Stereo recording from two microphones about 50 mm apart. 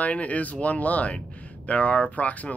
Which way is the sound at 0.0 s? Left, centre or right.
Left.